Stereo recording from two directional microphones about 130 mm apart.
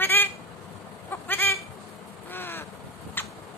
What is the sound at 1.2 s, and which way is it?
Goat, 15° left (ahead or behind).